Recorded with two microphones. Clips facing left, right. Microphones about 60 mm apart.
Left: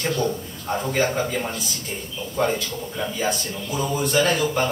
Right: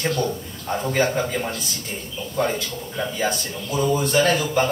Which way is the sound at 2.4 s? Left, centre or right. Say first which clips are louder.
Left 1 dB; centre.